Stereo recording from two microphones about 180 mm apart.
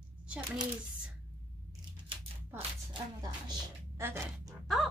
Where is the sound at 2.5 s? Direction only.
25° right (ahead or behind).